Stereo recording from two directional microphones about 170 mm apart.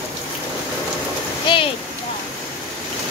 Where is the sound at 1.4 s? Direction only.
30° left (ahead or behind).